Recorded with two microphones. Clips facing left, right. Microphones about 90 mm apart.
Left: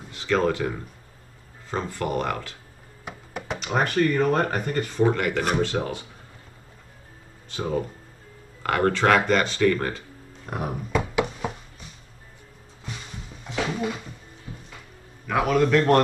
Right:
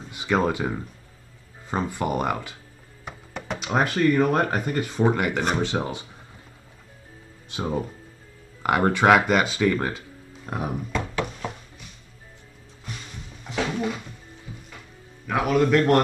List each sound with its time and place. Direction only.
0.1 s speech: 15° right (ahead or behind)
3.1 s music: centre (ahead or behind)
3.6 s speech: 10° right (ahead or behind)
7.5 s speech: 15° right (ahead or behind)
10.4 s speech: centre (ahead or behind)
10.9 s a sound: 10° left (ahead or behind)
15.2 s a man's voice: centre (ahead or behind)